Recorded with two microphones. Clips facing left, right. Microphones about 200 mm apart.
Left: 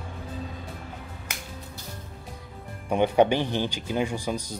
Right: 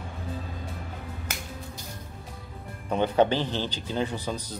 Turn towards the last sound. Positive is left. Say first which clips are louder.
# left 2 dB
turn(degrees=10)  # may be behind; listen again after turning